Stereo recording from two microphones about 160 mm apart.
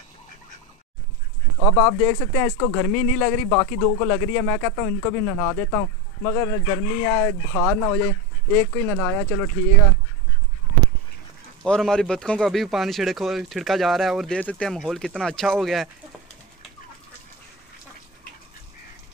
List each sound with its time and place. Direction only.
1.6 s speech: 15° left (ahead or behind)
11.6 s speech: 5° left (ahead or behind)